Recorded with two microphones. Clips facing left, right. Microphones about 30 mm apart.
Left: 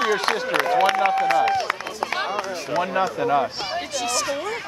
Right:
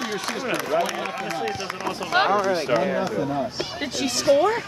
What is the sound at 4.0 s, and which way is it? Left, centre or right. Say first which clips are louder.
Speech: right 8 dB; right.